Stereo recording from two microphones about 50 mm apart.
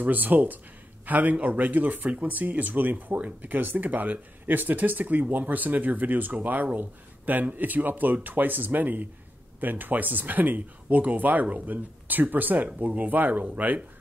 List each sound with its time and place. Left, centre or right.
0.0 s speech: right
3.2 s speech: right
3.5 s speech: right